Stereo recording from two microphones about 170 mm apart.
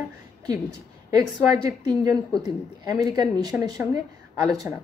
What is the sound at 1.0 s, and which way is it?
Speech, 25° right (ahead or behind).